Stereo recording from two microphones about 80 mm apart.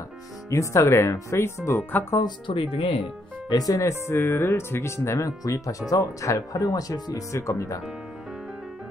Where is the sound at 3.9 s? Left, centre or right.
Left.